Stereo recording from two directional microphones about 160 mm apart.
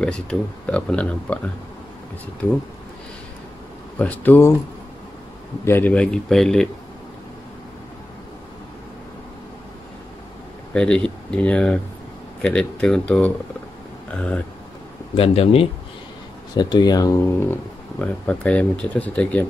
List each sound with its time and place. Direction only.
0.0 s speech: 5° left (ahead or behind)
4.0 s speech: 10° left (ahead or behind)
5.7 s speech: 10° left (ahead or behind)
10.7 s speech: 5° left (ahead or behind)
15.1 s speech: 35° left (ahead or behind)
16.5 s speech: 25° left (ahead or behind)
17.5 s speech: 10° left (ahead or behind)